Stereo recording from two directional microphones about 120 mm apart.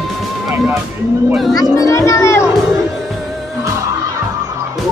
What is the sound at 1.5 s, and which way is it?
Speech, 30° left (ahead or behind).